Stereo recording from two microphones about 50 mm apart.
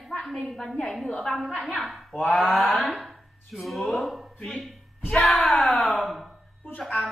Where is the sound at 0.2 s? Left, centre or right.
Centre.